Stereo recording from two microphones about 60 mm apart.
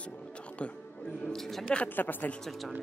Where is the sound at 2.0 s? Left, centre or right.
Left.